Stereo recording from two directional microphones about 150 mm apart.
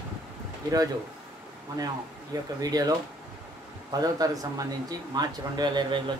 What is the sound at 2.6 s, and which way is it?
Speech, 25° right (ahead or behind).